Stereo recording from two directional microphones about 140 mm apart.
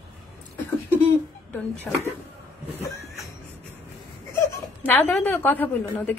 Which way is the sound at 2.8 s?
15° left (ahead or behind).